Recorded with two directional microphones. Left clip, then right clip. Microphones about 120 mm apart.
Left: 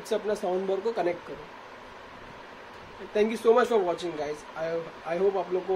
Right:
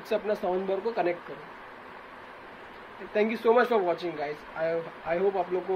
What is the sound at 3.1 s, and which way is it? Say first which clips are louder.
Speech: left 1 dB; 20° left (ahead or behind).